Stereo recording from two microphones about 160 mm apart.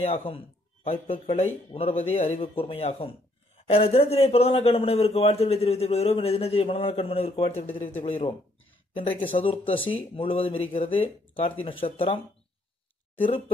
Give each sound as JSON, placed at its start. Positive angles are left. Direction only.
{"t": 0.0, "sound": "a man's voice", "side_deg": 35}
{"t": 9.4, "sound": "a man's voice", "side_deg": 35}